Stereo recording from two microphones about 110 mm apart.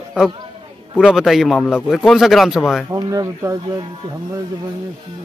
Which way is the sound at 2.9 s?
30° right (ahead or behind).